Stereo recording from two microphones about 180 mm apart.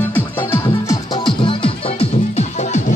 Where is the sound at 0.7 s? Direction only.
25° left (ahead or behind).